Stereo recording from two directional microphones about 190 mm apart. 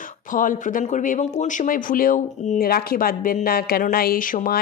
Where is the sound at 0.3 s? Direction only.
45° left (ahead or behind).